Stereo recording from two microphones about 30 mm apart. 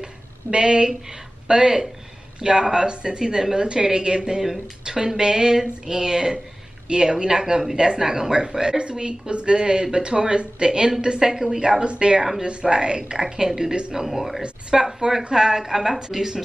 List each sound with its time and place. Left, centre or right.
0.5 s speech: right
4.4 s a woman's voice: centre